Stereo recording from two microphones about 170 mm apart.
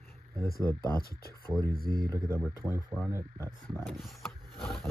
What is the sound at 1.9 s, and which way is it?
Speech, 25° right (ahead or behind).